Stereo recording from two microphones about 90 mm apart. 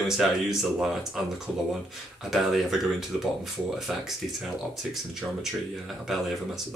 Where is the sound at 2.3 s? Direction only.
Centre (ahead or behind).